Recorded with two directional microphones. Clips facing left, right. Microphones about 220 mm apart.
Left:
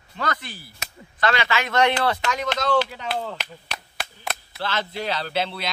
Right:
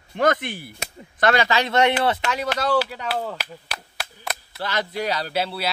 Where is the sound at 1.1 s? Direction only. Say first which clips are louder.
Right 4 dB; 45° right (ahead or behind); by 2.4 s 25° right (ahead or behind).